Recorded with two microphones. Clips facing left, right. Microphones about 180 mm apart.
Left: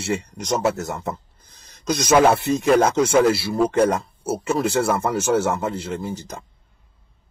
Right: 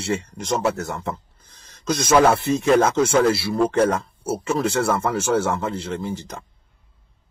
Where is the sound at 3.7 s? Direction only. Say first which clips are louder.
Left 1 dB; 15° left (ahead or behind).